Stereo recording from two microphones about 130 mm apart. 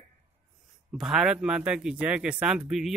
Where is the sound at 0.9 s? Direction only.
5° right (ahead or behind).